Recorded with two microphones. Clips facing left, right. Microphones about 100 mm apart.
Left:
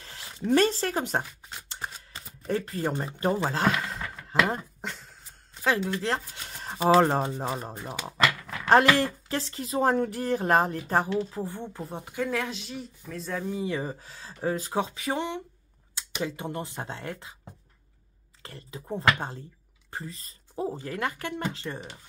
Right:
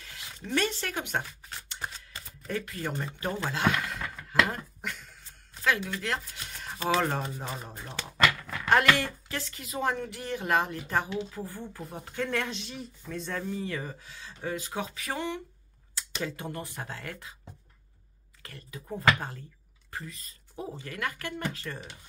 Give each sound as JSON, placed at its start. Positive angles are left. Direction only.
{"t": 0.0, "sound": "speech", "side_deg": 30}
{"t": 2.4, "sound": "speech", "side_deg": 30}
{"t": 5.6, "sound": "a sound", "side_deg": 30}
{"t": 6.9, "sound": "speech", "side_deg": 35}
{"t": 7.8, "sound": "speech", "side_deg": 10}
{"t": 8.2, "sound": "a sound", "side_deg": 0}
{"t": 8.9, "sound": "speech", "side_deg": 35}
{"t": 11.2, "sound": "speech", "side_deg": 25}
{"t": 12.0, "sound": "speech", "side_deg": 10}
{"t": 13.7, "sound": "speech", "side_deg": 30}
{"t": 14.9, "sound": "speech", "side_deg": 25}
{"t": 18.4, "sound": "speech", "side_deg": 30}